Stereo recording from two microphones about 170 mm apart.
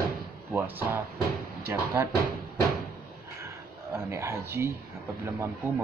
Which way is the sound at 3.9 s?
15° right (ahead or behind).